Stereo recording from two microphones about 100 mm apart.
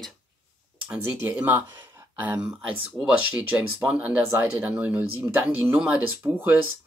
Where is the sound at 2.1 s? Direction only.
20° right (ahead or behind).